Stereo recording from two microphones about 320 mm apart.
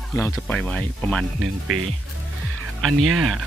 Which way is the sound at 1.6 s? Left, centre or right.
Right.